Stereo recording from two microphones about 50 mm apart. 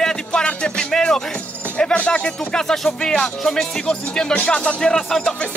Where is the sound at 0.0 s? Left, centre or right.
Centre.